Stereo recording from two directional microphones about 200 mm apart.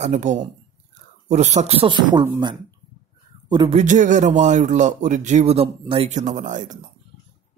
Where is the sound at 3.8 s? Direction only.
40° right (ahead or behind).